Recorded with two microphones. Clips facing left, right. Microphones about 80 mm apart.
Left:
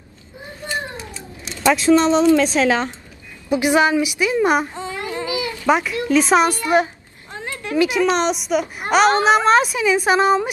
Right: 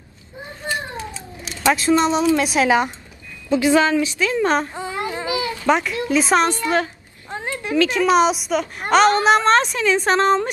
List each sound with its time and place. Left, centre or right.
1.6 s speech: centre
3.4 s speech: centre
4.7 s baby cry: right
5.7 s a woman's voice: centre
6.4 s speech: centre
7.2 s a sound: right
7.7 s speech: centre
8.0 s a woman's voice: centre